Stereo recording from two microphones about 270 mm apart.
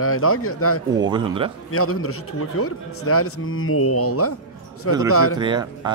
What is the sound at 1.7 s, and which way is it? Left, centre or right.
A man's voice, left.